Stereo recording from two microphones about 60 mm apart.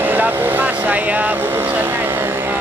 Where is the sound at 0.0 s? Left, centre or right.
Right.